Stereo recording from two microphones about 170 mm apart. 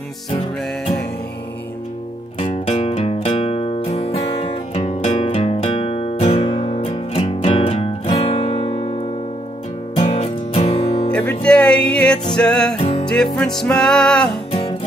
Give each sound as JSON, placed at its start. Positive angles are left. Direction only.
{"t": 2.3, "sound": "music", "side_deg": 35}
{"t": 9.9, "sound": "music", "side_deg": 35}
{"t": 11.1, "sound": "music", "side_deg": 5}
{"t": 14.5, "sound": "music", "side_deg": 30}